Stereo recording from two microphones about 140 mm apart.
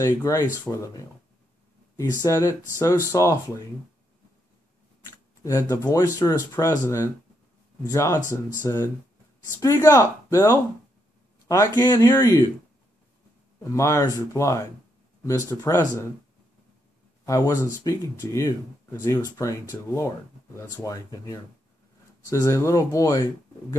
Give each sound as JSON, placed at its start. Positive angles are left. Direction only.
{"t": 0.0, "sound": "speech", "side_deg": 20}
{"t": 2.2, "sound": "speech", "side_deg": 20}
{"t": 5.4, "sound": "speech", "side_deg": 20}
{"t": 13.6, "sound": "speech", "side_deg": 20}
{"t": 17.2, "sound": "speech", "side_deg": 25}